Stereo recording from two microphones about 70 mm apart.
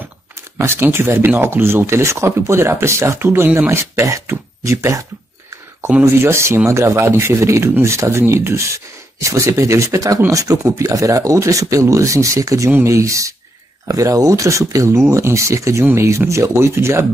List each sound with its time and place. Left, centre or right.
0.6 s speech: right
6.1 s speech: right